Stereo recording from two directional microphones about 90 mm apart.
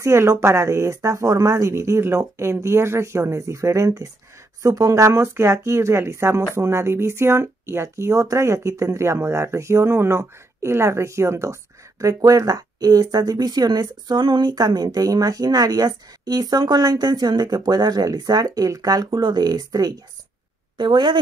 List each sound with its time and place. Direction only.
0.0 s speech: 30° right (ahead or behind)
19.0 s speech: 55° right (ahead or behind)
20.7 s a woman's voice: 55° right (ahead or behind)